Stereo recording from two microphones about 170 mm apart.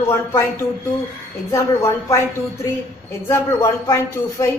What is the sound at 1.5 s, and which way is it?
Speech, 15° left (ahead or behind).